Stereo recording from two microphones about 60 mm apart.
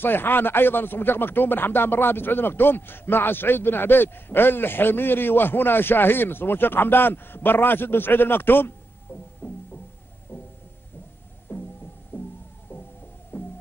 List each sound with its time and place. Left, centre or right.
0.0 s speech: left
9.4 s music: left
11.5 s throbbing: left
12.1 s heart murmur: left
13.3 s hum: left